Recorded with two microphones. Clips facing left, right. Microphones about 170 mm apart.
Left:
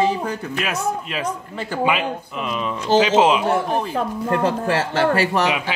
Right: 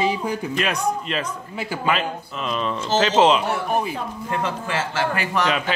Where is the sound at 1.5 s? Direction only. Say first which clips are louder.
Left 1 dB; 10° right (ahead or behind).